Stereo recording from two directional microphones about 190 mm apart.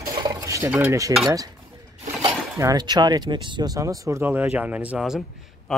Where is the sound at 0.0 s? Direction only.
15° right (ahead or behind).